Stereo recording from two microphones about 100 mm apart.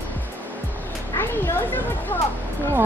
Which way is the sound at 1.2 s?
25° left (ahead or behind).